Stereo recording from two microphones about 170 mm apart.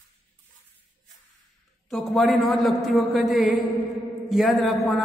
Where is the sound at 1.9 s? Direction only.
Centre (ahead or behind).